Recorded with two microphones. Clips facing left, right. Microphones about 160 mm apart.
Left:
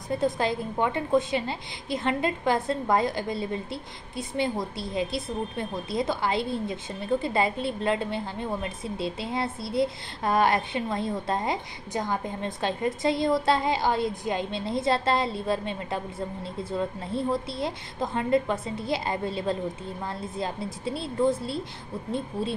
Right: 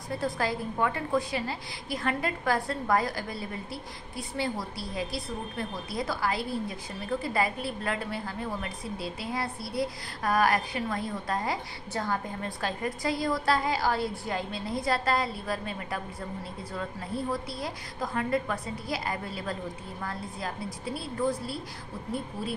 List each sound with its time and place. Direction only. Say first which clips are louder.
0.1 s a woman's voice: left 4 dB; 20° left (ahead or behind)